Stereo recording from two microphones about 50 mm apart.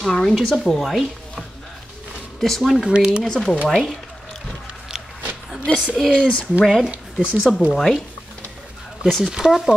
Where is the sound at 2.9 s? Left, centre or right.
Centre.